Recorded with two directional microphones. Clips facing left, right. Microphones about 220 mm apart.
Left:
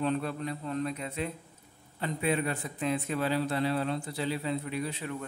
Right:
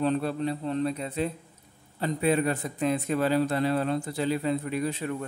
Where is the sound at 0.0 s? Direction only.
35° right (ahead or behind).